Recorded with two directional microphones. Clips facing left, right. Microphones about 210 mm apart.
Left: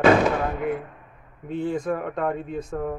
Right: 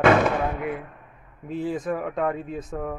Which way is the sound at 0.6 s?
50° left (ahead or behind).